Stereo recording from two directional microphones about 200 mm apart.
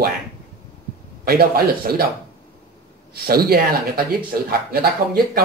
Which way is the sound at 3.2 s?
50° right (ahead or behind).